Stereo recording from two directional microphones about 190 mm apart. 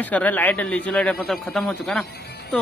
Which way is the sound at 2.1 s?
60° left (ahead or behind).